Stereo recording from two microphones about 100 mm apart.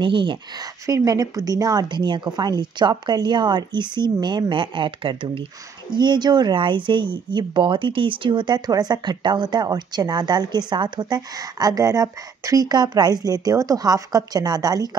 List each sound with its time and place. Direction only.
0.0 s speech: 55° right (ahead or behind)
0.8 s speech: 35° right (ahead or behind); by 5.4 s 60° right (ahead or behind)
5.9 s speech: 45° right (ahead or behind)